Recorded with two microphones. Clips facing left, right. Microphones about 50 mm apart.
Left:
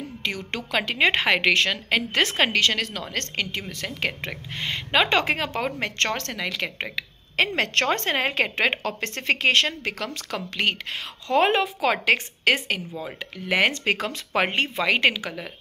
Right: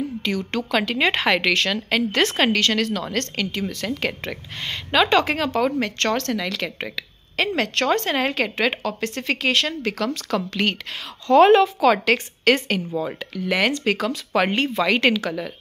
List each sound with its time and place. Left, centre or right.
0.2 s a woman's voice: left
9.7 s a woman's voice: left
13.5 s a woman's voice: left
14.4 s a woman's voice: centre